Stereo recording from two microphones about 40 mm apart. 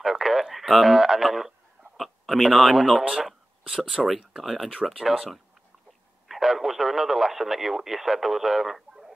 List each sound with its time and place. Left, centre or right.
0.0 s speech: centre
3.6 s speech: centre
4.4 s speech: centre